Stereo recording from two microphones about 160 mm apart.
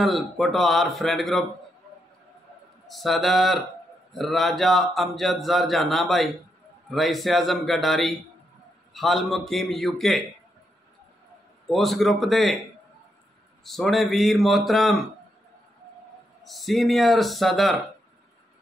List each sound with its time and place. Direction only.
0.0 s speech: centre (ahead or behind)
2.9 s speech: centre (ahead or behind)
11.7 s speech: centre (ahead or behind)
13.7 s speech: centre (ahead or behind)
16.4 s speech: centre (ahead or behind)